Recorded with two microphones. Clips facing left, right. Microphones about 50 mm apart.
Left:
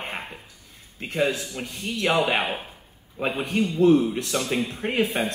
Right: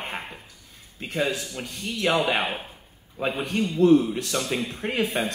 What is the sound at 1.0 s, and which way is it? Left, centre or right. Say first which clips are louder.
Speech: left 2 dB; left.